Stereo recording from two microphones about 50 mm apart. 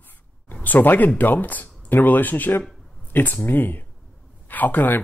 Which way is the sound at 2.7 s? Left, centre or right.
Centre.